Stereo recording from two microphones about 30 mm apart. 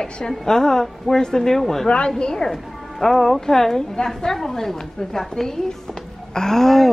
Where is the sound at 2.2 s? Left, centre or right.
Left.